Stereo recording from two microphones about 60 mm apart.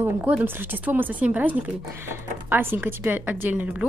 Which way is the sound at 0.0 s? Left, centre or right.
Right.